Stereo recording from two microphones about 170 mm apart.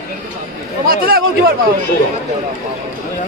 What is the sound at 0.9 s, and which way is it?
Speech, 60° right (ahead or behind).